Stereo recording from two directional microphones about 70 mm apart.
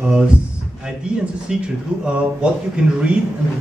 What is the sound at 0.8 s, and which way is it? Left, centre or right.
Speech, centre.